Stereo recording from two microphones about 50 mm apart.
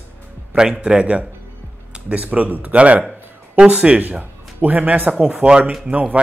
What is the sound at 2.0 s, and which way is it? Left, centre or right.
Speech, right.